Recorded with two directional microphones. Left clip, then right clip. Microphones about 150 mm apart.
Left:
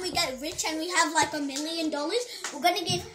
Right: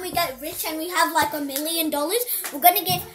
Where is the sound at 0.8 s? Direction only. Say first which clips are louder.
Right 4 dB; 15° left (ahead or behind).